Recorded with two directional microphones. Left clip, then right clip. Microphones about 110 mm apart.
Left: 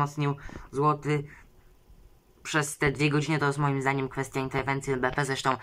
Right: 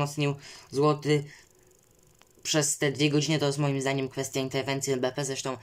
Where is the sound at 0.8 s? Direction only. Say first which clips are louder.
Right 1 dB; 25° right (ahead or behind).